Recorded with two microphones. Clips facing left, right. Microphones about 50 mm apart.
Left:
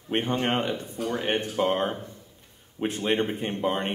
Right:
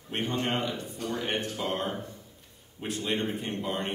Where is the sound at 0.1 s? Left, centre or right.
Left.